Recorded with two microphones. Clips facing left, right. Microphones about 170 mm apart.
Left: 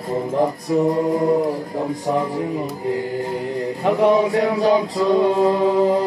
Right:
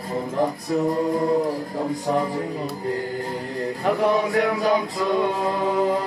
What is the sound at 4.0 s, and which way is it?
Music, 25° left (ahead or behind).